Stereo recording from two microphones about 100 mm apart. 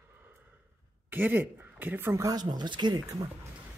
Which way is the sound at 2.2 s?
45° right (ahead or behind).